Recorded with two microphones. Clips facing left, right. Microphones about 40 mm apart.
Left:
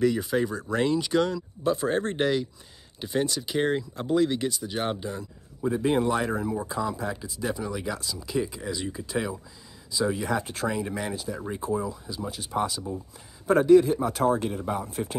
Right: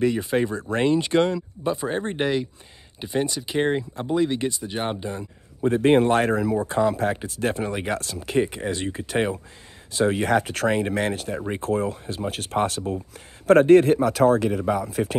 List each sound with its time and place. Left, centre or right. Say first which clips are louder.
0.0 s speech: right 2 dB; right
1.8 s speech: even; centre
5.7 s speech: right 6 dB; right
6.7 s speech: right 8 dB; right